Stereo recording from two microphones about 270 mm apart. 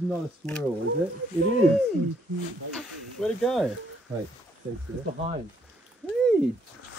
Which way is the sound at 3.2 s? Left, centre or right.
Centre.